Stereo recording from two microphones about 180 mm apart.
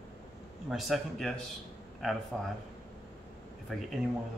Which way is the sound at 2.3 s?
5° left (ahead or behind).